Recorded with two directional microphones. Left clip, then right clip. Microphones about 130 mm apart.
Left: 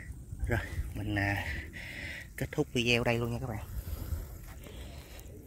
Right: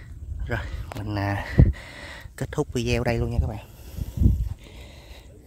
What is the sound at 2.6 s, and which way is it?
Speech, 60° right (ahead or behind).